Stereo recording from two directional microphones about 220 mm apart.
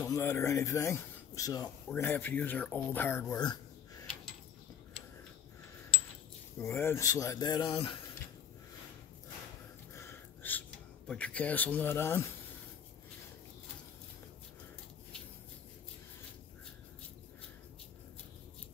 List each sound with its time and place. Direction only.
0.0 s speech: 10° left (ahead or behind)
6.6 s speech: 10° left (ahead or behind)
9.9 s a sound: 10° left (ahead or behind)
11.1 s speech: 5° left (ahead or behind)